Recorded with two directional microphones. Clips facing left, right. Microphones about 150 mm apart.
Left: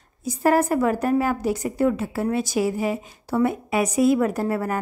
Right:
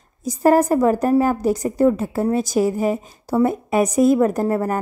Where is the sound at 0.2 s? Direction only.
40° right (ahead or behind).